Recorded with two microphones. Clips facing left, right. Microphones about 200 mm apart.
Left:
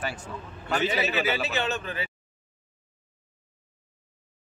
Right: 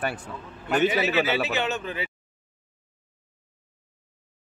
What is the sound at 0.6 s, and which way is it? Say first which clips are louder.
A man's voice: right 4 dB; 15° right (ahead or behind).